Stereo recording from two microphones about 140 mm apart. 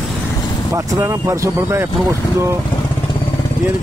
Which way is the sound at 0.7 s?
20° right (ahead or behind).